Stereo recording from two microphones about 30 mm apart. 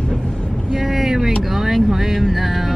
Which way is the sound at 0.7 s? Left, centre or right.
Centre.